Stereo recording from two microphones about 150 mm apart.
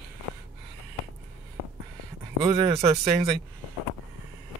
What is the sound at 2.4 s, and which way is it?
Speech, 40° right (ahead or behind).